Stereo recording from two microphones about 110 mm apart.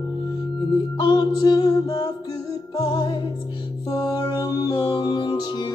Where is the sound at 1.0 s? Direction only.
40° left (ahead or behind).